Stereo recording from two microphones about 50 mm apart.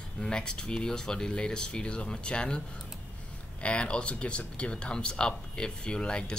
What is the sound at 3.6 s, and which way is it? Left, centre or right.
Speech, left.